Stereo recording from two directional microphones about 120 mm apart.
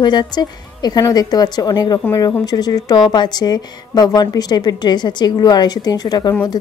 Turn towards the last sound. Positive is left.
turn(degrees=35)  # may be behind; listen again after turning